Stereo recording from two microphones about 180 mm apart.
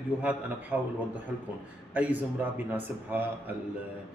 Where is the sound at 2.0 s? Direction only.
10° right (ahead or behind).